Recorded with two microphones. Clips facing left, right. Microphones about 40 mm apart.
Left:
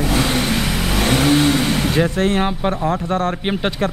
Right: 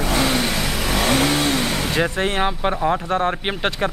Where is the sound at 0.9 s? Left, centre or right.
Right.